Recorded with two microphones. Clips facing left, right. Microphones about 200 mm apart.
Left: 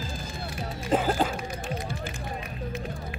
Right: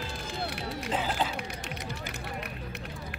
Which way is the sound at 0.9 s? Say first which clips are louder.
Left 7 dB; 50° left (ahead or behind).